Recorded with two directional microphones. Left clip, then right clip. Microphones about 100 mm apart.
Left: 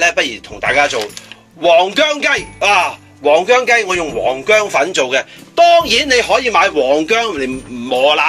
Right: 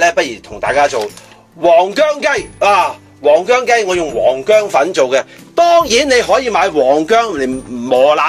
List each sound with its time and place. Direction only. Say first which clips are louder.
0.0 s a man's voice: right 1 dB; 25° right (ahead or behind)
3.3 s a man's voice: right 1 dB; 20° right (ahead or behind)
4.7 s speech: right 2 dB; 45° right (ahead or behind)
6.0 s speech: right 1 dB; 80° right